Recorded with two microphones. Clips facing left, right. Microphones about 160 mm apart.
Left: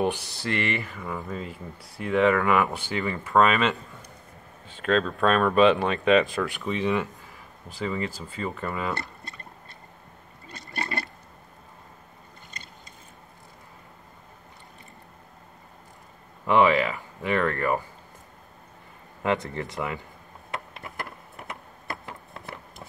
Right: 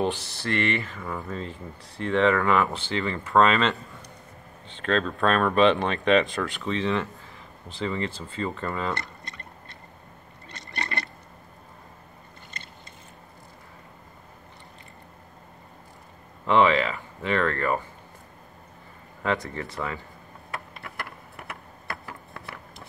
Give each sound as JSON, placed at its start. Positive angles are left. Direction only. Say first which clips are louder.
{"t": 0.0, "sound": "speech", "louder": "left 1 dB", "side_deg": 15}
{"t": 16.4, "sound": "speech", "louder": "even", "side_deg": 10}
{"t": 19.2, "sound": "speech", "louder": "left 1 dB", "side_deg": 20}